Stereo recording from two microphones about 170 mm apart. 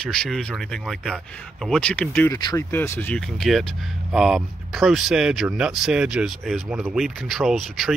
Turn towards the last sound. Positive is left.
turn(degrees=0)  # may be behind; listen again after turning